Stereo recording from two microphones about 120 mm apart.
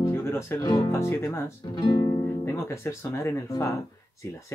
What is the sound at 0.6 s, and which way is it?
Speech, 35° left (ahead or behind).